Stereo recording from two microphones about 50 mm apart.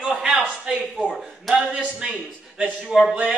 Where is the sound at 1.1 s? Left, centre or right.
Centre.